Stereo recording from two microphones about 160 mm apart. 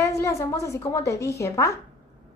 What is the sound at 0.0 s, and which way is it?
A woman's voice, 20° left (ahead or behind).